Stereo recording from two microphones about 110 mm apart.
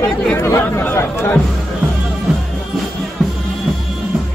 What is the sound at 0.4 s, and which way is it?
Speech, 25° left (ahead or behind).